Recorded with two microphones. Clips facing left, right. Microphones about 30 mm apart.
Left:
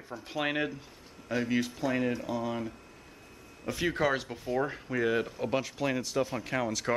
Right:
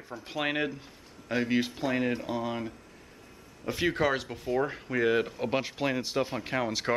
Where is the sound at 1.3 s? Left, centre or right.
Right.